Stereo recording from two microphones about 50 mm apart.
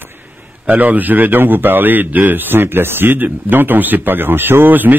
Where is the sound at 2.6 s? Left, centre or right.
Right.